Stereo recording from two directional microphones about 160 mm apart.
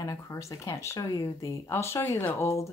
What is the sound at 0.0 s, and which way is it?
A woman's voice, 20° left (ahead or behind).